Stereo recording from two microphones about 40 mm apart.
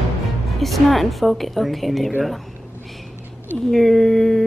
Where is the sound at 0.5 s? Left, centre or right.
Centre.